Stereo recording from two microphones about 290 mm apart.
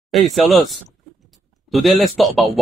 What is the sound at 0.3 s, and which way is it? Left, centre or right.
Speech, centre.